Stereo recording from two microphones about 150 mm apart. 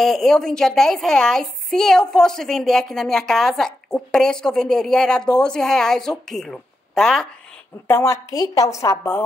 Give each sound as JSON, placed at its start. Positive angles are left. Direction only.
{"t": 0.0, "sound": "a woman's voice", "side_deg": 0}
{"t": 7.9, "sound": "a woman's voice", "side_deg": 15}